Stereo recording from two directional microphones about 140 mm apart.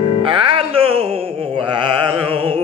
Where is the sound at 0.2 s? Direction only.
40° right (ahead or behind).